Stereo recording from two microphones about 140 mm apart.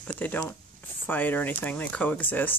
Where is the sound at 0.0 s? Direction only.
10° left (ahead or behind).